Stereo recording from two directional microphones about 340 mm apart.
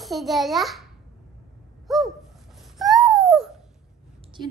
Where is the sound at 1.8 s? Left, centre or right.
Centre.